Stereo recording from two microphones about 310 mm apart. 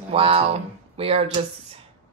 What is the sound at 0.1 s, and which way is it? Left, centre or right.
Speech, centre.